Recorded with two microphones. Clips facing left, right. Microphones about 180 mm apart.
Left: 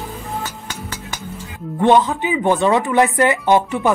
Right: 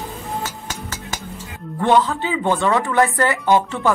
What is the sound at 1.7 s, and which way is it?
Speech, 20° left (ahead or behind).